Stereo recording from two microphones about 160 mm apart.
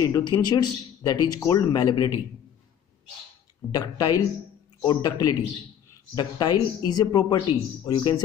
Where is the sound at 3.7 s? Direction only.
20° left (ahead or behind).